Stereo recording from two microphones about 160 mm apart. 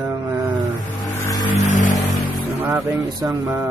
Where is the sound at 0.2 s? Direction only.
10° right (ahead or behind).